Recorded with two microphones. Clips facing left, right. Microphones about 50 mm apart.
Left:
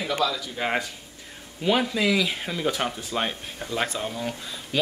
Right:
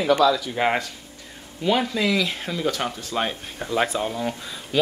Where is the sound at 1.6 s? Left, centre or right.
Centre.